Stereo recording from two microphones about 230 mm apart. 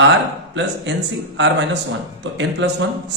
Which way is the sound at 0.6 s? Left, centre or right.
Right.